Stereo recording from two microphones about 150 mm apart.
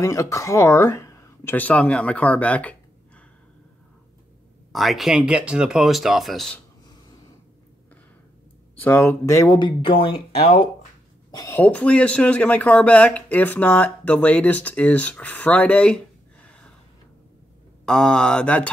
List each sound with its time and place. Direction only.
0.0 s speech: 20° left (ahead or behind)
4.7 s speech: centre (ahead or behind)
8.7 s speech: 15° left (ahead or behind); by 10.4 s 40° left (ahead or behind)
11.3 s speech: 20° left (ahead or behind)
11.6 s speech: 10° left (ahead or behind)
17.8 s speech: 5° left (ahead or behind)